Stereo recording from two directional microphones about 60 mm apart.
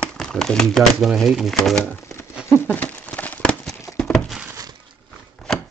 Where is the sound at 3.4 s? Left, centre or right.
Centre.